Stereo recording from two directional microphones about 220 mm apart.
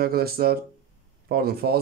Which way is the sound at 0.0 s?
45° right (ahead or behind).